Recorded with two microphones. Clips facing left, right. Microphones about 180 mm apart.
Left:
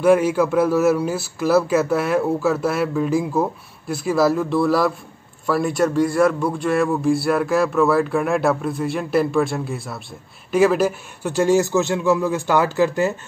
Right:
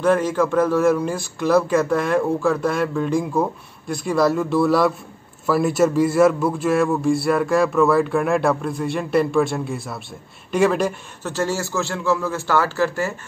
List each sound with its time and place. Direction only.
0.0 s a man's voice: 10° left (ahead or behind)